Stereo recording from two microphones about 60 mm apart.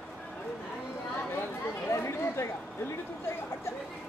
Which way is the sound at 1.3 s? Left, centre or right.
Left.